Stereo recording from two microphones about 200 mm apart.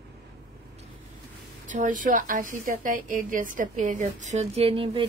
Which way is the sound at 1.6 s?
40° right (ahead or behind).